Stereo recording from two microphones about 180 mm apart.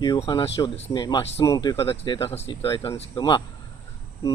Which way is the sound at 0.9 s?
25° left (ahead or behind).